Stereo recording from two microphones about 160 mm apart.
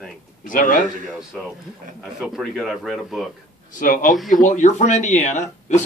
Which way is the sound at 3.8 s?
60° left (ahead or behind).